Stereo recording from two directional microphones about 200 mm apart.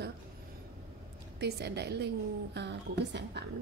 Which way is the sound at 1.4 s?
55° right (ahead or behind).